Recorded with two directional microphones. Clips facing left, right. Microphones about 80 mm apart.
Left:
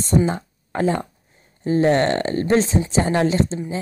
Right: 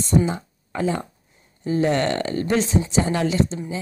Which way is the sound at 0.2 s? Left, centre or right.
Left.